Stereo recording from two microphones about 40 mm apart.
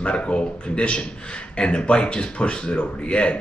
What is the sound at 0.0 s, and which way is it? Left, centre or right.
Speech, left.